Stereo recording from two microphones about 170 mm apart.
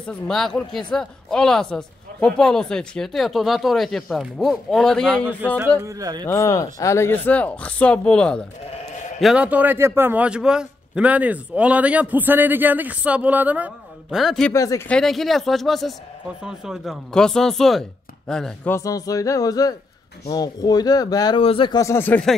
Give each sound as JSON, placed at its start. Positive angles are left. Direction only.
{"t": 0.0, "sound": "speech", "side_deg": 5}
{"t": 5.8, "sound": "speech", "side_deg": -20}
{"t": 6.2, "sound": "speech", "side_deg": 20}
{"t": 9.2, "sound": "a man's voice", "side_deg": -5}
{"t": 14.5, "sound": "speech", "side_deg": 20}
{"t": 14.9, "sound": "speech", "side_deg": 0}